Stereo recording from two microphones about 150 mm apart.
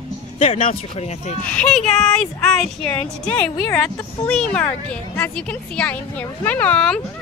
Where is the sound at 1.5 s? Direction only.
5° left (ahead or behind).